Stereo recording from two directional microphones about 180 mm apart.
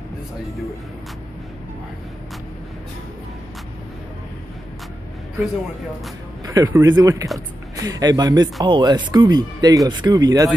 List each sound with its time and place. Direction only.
6.4 s speech: 20° right (ahead or behind)